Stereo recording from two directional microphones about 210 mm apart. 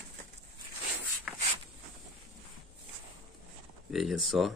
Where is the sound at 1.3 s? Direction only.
Centre (ahead or behind).